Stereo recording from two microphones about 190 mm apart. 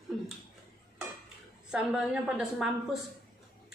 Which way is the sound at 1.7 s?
5° right (ahead or behind).